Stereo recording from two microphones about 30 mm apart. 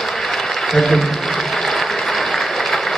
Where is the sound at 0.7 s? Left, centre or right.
Centre.